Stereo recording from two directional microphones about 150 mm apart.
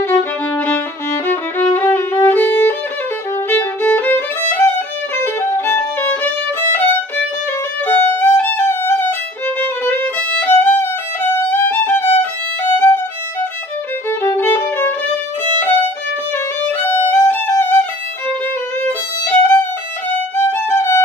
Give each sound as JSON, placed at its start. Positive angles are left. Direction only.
{"t": 0.7, "sound": "violin", "side_deg": 10}
{"t": 18.9, "sound": "violin", "side_deg": 15}